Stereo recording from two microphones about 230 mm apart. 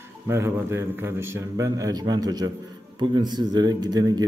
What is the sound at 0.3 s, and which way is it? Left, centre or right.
Speech, centre.